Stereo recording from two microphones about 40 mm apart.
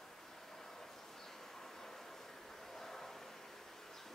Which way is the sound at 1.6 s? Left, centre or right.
Centre.